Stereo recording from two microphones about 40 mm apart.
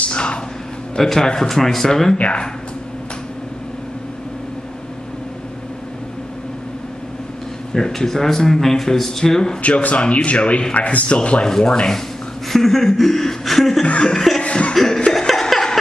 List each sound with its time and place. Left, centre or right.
0.0 s a sound: left
0.9 s speech: centre
2.1 s speech: left
7.7 s speech: centre
9.6 s speech: left
11.4 s sanding: centre
12.4 s speech: centre
13.8 s sanding: left
14.4 s chuckle: left
14.7 s chuckle: centre
15.1 s laughter: centre